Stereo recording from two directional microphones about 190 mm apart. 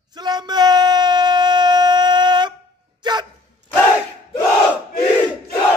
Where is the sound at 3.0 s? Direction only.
25° right (ahead or behind).